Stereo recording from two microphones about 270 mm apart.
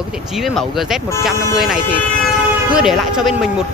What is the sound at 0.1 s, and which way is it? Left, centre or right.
Speech, centre.